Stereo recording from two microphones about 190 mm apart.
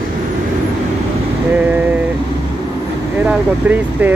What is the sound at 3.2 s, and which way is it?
Speech, 5° right (ahead or behind).